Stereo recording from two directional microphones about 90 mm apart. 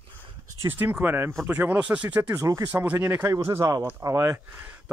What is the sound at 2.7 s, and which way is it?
Speech, 25° right (ahead or behind).